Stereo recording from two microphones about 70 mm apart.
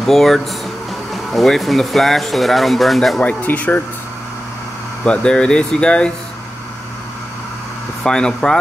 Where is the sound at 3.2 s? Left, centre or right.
Centre.